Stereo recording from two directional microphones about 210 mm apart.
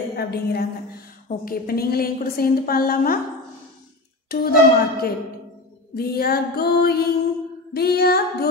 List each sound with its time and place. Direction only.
0.1 s a woman's voice: 50° left (ahead or behind)
4.3 s a woman's voice: 45° left (ahead or behind)